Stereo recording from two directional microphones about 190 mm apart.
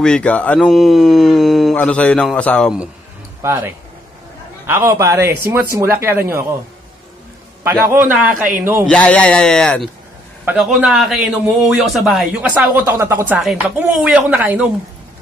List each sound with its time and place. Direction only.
0.0 s speech: 5° left (ahead or behind)
3.4 s a man's voice: 10° right (ahead or behind)
7.8 s a man's voice: 10° right (ahead or behind)
8.3 s a man's voice: 45° right (ahead or behind)
8.8 s a man's voice: 5° left (ahead or behind)